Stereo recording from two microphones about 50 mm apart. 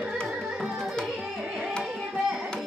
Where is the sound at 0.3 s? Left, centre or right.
Centre.